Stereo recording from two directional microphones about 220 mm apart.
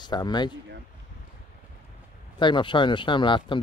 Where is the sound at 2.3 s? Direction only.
20° left (ahead or behind).